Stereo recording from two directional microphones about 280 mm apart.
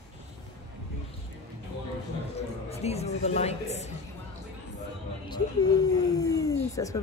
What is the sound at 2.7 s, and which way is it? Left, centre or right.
Speech, left.